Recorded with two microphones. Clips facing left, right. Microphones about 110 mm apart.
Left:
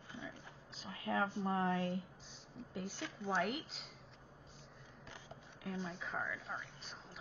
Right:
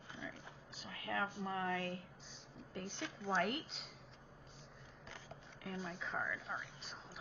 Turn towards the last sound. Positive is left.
turn(degrees=0)  # may be behind; listen again after turning